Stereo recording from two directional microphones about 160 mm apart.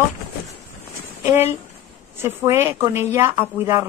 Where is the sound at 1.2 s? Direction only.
15° right (ahead or behind).